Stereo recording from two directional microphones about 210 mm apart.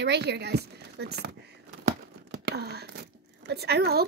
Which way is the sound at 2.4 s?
50° right (ahead or behind).